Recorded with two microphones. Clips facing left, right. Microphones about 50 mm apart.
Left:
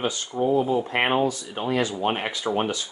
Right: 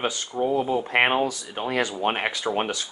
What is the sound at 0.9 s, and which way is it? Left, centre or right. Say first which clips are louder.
Speech: right 3 dB; right.